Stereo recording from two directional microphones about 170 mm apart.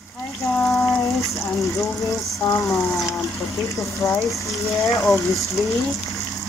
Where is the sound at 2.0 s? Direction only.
20° left (ahead or behind).